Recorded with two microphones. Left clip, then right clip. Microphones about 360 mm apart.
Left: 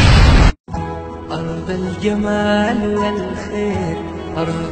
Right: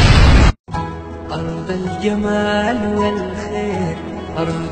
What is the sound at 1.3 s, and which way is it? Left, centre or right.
Music, centre.